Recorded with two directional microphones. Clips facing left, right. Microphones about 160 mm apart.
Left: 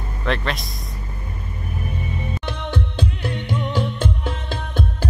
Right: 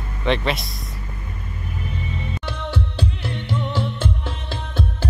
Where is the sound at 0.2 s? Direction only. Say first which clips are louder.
Right 3 dB; centre (ahead or behind).